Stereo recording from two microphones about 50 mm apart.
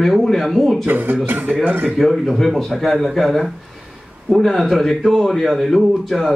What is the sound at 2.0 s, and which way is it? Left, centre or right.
Speech, centre.